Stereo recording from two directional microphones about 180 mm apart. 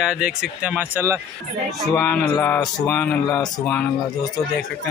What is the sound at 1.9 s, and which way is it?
Speech, 10° left (ahead or behind).